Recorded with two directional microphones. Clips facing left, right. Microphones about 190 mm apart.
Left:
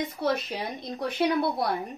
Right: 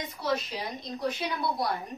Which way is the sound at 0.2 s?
55° left (ahead or behind).